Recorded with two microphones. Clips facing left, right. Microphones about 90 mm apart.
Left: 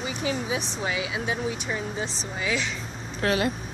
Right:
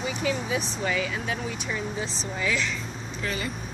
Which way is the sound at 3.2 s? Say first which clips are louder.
Left 8 dB; 65° left (ahead or behind).